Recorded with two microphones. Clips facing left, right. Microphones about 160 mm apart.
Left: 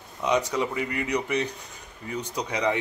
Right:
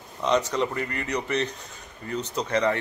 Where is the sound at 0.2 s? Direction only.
10° left (ahead or behind).